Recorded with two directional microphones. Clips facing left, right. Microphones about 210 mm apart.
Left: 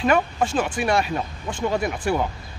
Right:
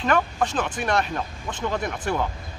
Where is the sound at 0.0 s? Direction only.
10° left (ahead or behind).